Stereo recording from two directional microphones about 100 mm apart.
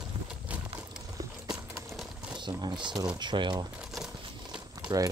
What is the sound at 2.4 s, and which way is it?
Speech, 50° right (ahead or behind).